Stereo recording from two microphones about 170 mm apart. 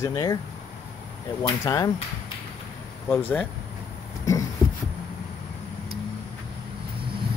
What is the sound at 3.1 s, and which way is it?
Speech, 10° left (ahead or behind).